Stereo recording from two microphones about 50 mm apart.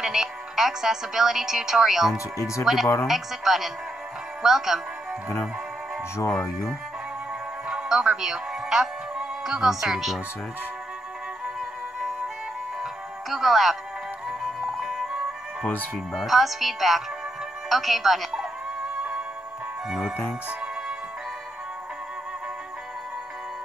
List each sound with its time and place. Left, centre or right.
0.0 s speech: centre
2.1 s speech: left
2.6 s speech: centre
7.6 s speech: centre
13.3 s speech: centre
14.8 s music: centre
16.1 s speech: centre